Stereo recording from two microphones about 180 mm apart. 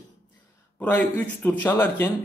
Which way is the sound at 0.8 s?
10° left (ahead or behind).